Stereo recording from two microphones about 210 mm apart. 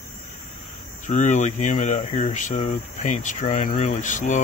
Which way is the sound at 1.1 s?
35° left (ahead or behind).